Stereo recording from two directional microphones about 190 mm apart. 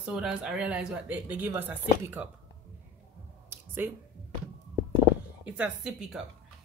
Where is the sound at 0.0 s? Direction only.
5° right (ahead or behind).